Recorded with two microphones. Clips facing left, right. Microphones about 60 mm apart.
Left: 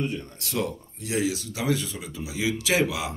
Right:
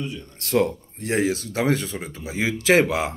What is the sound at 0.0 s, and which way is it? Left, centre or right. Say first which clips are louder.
Speech: left 2 dB; left.